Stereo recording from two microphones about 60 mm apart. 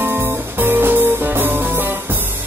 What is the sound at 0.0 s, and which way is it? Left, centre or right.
Music, right.